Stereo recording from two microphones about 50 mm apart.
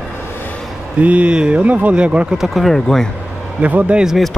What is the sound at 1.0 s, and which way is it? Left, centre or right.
Speech, right.